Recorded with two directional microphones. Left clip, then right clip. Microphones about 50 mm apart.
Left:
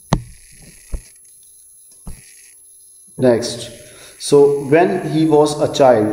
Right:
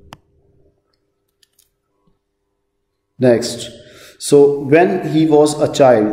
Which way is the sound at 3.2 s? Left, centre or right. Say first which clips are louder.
Right 1 dB; centre.